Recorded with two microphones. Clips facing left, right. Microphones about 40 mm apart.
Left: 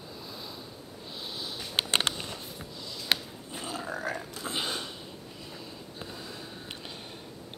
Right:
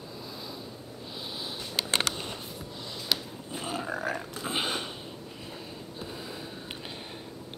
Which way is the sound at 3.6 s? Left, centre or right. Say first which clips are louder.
Right 2 dB; right.